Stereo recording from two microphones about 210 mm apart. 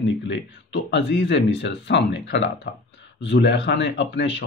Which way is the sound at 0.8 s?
55° left (ahead or behind).